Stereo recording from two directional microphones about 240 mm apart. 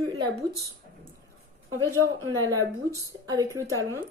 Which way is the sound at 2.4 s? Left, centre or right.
Centre.